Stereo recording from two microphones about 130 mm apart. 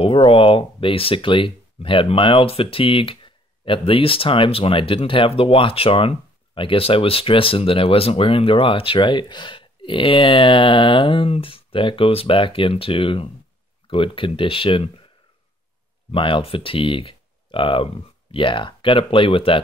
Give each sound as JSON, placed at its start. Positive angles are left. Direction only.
{"t": 0.0, "sound": "speech", "side_deg": 45}
{"t": 16.1, "sound": "speech", "side_deg": 40}